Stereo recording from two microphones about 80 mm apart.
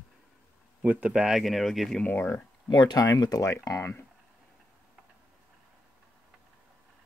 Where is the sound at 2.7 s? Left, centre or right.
Left.